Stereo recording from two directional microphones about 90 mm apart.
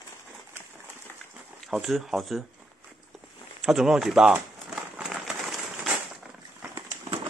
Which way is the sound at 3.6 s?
5° right (ahead or behind).